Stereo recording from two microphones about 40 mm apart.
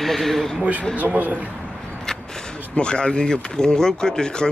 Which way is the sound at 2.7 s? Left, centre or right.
Left.